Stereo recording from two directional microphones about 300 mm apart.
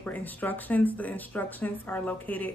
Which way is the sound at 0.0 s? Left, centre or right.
Centre.